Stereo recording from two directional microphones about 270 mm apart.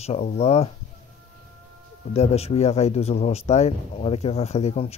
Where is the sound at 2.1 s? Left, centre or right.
Left.